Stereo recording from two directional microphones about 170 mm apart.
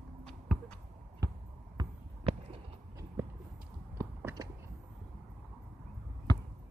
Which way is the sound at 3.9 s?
15° right (ahead or behind).